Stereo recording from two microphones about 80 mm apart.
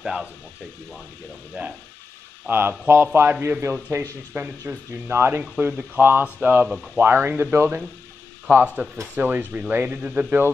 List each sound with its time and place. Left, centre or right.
0.0 s speech: centre
2.9 s speech: right
3.9 s speech: right
4.3 s speech: right